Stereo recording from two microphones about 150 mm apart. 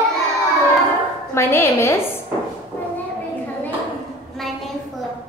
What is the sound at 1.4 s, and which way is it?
Speech, 15° left (ahead or behind).